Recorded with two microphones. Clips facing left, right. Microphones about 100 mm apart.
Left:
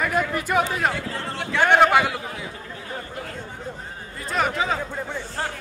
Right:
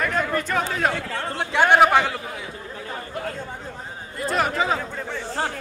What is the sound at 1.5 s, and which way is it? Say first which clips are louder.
Speech: right 1 dB; 10° right (ahead or behind).